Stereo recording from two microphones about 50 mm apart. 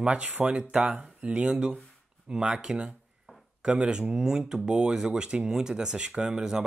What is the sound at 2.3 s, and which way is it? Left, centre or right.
Speech, centre.